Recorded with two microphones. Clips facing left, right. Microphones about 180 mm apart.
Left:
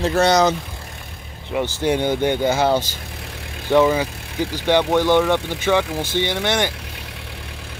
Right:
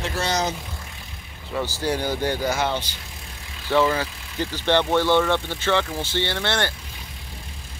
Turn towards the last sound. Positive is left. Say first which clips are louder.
# left 4 dB
turn(degrees=15)  # may be behind; listen again after turning